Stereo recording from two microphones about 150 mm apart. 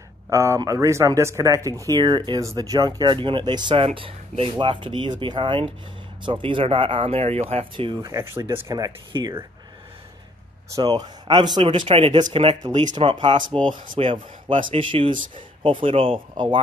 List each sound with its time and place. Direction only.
0.3 s speech: 20° right (ahead or behind)
8.2 s speech: 15° right (ahead or behind)
10.7 s speech: 25° right (ahead or behind)